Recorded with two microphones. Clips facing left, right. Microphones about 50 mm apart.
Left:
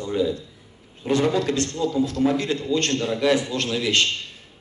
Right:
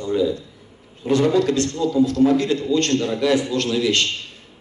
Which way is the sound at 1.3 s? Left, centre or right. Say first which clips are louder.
Right 4 dB; left.